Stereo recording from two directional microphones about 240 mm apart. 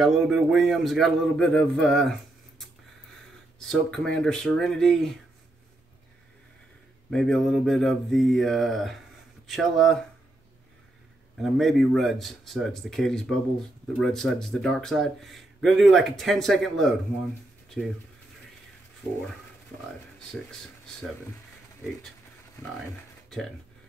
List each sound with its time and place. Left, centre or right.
0.0 s speech: centre
3.5 s speech: centre
7.1 s speech: centre
11.4 s speech: centre